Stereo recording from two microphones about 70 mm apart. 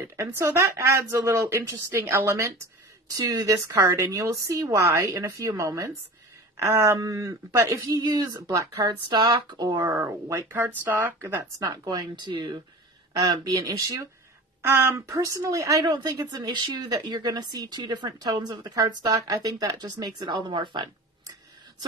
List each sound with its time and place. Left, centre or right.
0.3 s speech: right
3.1 s a woman's voice: right
9.9 s speech: right
10.5 s speech: right
11.6 s a woman's voice: right
13.5 s speech: right
14.6 s a woman's voice: right
15.0 s a woman's voice: right
19.0 s speech: right